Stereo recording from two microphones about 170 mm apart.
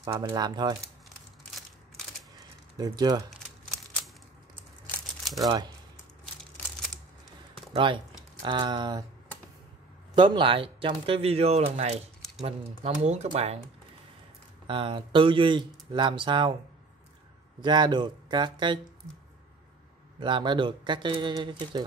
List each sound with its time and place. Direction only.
0.0 s speech: 20° right (ahead or behind)
2.8 s speech: 20° right (ahead or behind)
3.3 s a sound: centre (ahead or behind)
5.4 s speech: 20° right (ahead or behind)
7.7 s speech: 30° right (ahead or behind)
10.1 s speech: 25° right (ahead or behind)
14.7 s speech: 30° right (ahead or behind)
17.6 s speech: 25° right (ahead or behind)
20.2 s speech: 30° right (ahead or behind)